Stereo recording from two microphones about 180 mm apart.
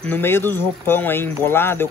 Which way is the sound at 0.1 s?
10° left (ahead or behind).